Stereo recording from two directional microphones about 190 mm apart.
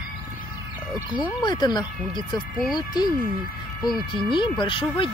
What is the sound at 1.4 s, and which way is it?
Speech, 20° left (ahead or behind).